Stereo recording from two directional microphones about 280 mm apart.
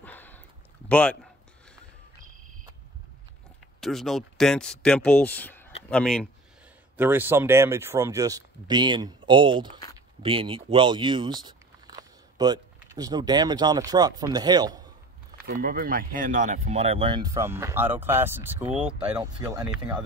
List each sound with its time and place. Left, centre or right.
0.0 s a sound: centre
0.8 s speech: centre
3.8 s speech: centre
7.0 s speech: centre
15.4 s speech: right; by 19.6 s centre
19.6 s speech: centre